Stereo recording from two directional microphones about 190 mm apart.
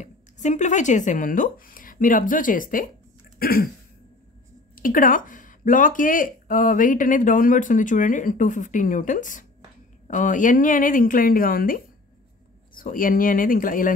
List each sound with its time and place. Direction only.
0.0 s speech: 40° left (ahead or behind)
3.3 s a sound: 50° left (ahead or behind)
4.7 s speech: 45° left (ahead or behind)